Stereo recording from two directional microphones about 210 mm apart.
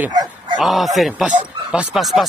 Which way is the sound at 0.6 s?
Centre (ahead or behind).